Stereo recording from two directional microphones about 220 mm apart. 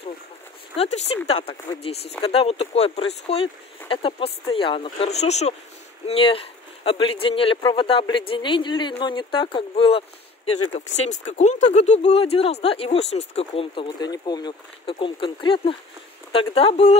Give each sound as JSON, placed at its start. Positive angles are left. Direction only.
{"t": 0.7, "sound": "speech", "side_deg": 30}